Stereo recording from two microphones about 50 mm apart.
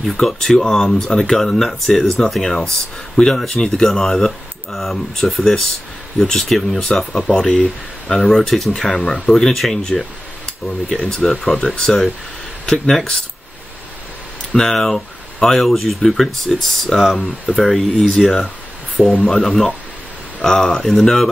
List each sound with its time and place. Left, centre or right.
0.0 s speech: centre
5.2 s speech: centre
6.1 s speech: centre
11.1 s speech: centre
11.4 s speech: centre
14.5 s speech: centre